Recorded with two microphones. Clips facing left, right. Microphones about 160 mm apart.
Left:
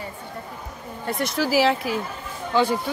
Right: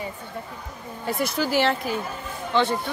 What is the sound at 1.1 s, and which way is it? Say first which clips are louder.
Speech: left 1 dB; centre (ahead or behind).